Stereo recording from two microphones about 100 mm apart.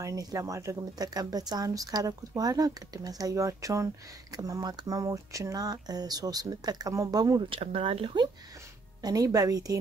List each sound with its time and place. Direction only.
0.0 s speech: 35° right (ahead or behind)
7.4 s speech: 65° right (ahead or behind)
9.0 s speech: 40° right (ahead or behind)